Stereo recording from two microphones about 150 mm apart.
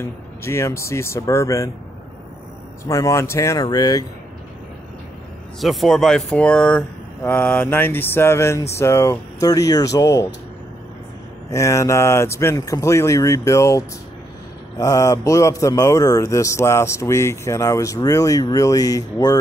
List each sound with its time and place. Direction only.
0.0 s a man's voice: 20° left (ahead or behind)
2.9 s a man's voice: 20° left (ahead or behind)
5.6 s a man's voice: centre (ahead or behind); by 10.2 s 20° left (ahead or behind)
11.5 s a man's voice: 20° left (ahead or behind)